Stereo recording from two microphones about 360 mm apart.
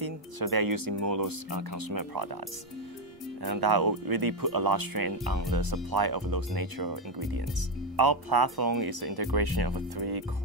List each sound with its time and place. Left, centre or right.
0.0 s music: right
1.1 s speech: right
3.4 s speech: right
8.6 s speech: right
9.0 s speech: right